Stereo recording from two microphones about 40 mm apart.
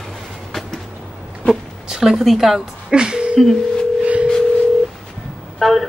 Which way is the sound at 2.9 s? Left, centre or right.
Right.